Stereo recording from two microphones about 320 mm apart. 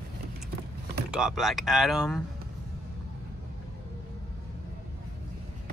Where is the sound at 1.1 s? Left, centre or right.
Centre.